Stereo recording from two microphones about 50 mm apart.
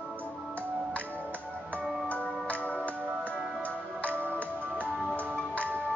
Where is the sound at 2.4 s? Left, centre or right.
Left.